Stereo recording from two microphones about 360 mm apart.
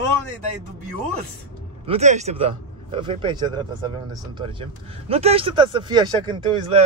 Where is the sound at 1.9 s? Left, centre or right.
Centre.